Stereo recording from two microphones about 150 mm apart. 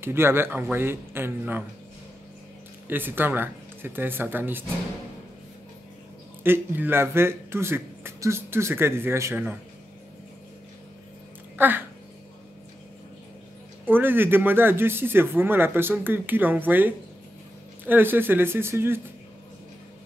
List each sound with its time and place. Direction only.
0.0 s a man's voice: 15° right (ahead or behind)
2.9 s a man's voice: 15° right (ahead or behind)
6.4 s a man's voice: 15° right (ahead or behind)
11.5 s a sound: 15° right (ahead or behind)
13.8 s a man's voice: 15° right (ahead or behind)